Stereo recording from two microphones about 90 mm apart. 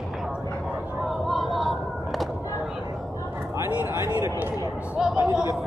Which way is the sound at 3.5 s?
30° right (ahead or behind).